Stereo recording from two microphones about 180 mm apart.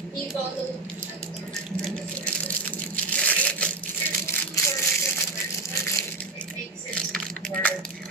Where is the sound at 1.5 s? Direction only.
5° left (ahead or behind).